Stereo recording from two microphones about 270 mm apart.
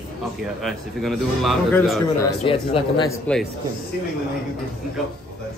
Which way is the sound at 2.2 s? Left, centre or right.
Centre.